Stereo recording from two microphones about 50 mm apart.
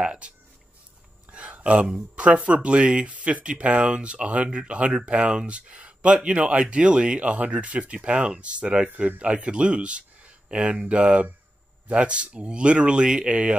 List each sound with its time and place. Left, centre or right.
0.0 s speech: centre
1.3 s a sound: right
2.0 s speech: right